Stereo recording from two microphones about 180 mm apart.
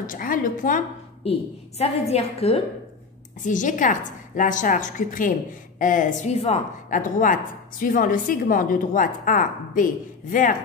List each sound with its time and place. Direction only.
0.0 s a woman's voice: 50° left (ahead or behind)
1.8 s a woman's voice: 35° left (ahead or behind)
3.4 s a woman's voice: 45° left (ahead or behind)